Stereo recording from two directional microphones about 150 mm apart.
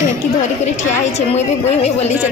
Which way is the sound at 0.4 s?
50° left (ahead or behind).